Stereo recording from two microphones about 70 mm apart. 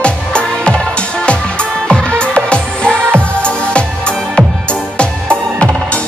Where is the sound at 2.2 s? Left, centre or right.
Centre.